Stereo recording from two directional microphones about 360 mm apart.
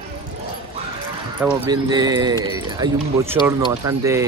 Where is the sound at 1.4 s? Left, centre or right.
Centre.